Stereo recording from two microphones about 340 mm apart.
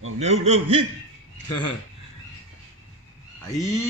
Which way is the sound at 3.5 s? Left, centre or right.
Centre.